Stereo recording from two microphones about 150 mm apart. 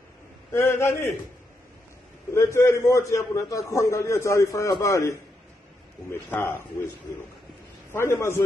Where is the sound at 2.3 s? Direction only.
20° left (ahead or behind).